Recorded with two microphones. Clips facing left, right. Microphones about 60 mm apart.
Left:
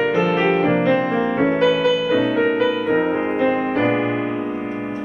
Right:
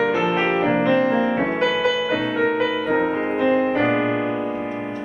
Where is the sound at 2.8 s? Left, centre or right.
Centre.